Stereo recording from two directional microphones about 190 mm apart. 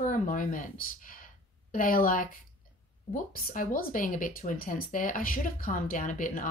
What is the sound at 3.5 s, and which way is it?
Speech, 45° left (ahead or behind).